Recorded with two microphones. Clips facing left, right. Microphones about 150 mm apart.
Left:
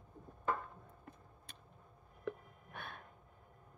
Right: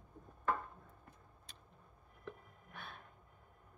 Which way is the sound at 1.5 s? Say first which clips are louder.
Left 3 dB; 55° left (ahead or behind).